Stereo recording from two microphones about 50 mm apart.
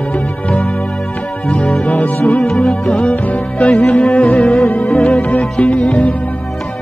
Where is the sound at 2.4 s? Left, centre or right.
Centre.